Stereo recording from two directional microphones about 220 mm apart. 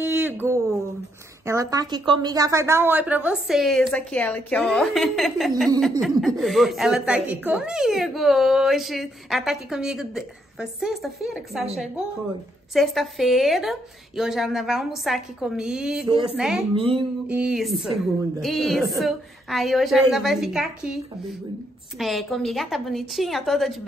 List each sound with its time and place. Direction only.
0.0 s a sound: 10° right (ahead or behind)
1.4 s a woman's voice: 15° right (ahead or behind)
12.7 s a woman's voice: centre (ahead or behind)
16.7 s speech: 25° right (ahead or behind)
17.3 s a woman's voice: 5° right (ahead or behind)